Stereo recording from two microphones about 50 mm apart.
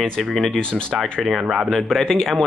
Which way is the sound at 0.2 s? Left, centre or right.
Centre.